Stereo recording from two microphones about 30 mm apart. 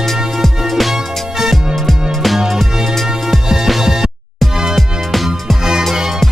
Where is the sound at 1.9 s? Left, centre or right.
Centre.